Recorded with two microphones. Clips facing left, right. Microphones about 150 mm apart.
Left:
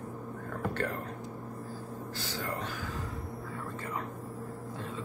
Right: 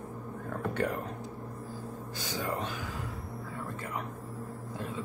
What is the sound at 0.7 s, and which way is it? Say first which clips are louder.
Speech: right 4 dB; 15° right (ahead or behind).